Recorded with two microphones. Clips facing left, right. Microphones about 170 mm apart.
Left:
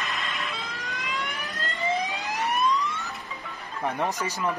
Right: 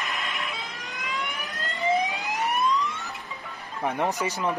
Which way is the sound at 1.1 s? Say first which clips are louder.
Right 2 dB; 20° right (ahead or behind).